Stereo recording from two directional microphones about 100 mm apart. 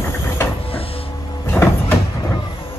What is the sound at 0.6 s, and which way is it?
Printer, 70° left (ahead or behind).